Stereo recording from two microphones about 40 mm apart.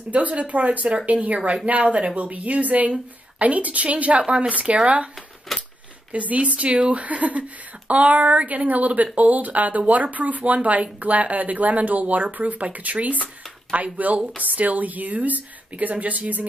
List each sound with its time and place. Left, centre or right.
0.1 s speech: right
5.5 s a sound: centre
6.1 s speech: right